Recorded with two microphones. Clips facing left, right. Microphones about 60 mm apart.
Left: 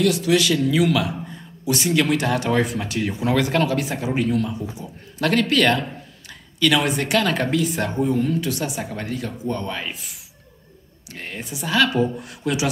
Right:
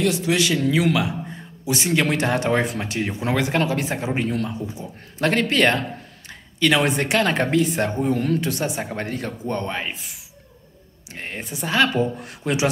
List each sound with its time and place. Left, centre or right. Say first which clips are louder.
0.0 s a man's voice: left 2 dB; right
8.4 s speech: even; right